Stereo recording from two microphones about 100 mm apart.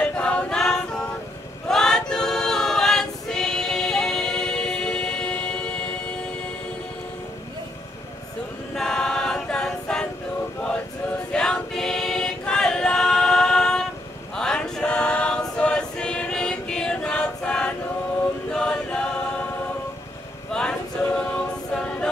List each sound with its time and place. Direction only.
0.0 s choir: 10° left (ahead or behind)
8.7 s choir: 5° left (ahead or behind)
11.3 s choir: 10° left (ahead or behind)
20.5 s a capella: 10° left (ahead or behind)